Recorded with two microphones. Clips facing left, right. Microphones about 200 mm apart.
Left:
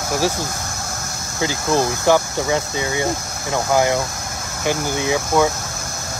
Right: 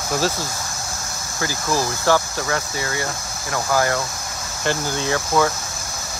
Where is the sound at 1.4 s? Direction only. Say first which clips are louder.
Left 4 dB; 20° left (ahead or behind).